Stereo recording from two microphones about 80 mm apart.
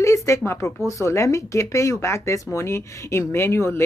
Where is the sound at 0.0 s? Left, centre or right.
Left.